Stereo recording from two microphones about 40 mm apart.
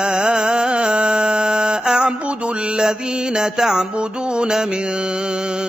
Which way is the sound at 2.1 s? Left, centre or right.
Right.